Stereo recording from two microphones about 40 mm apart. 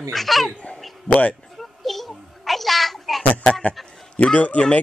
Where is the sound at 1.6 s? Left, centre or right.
Centre.